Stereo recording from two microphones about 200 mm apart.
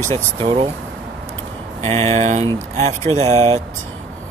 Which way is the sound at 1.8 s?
35° right (ahead or behind).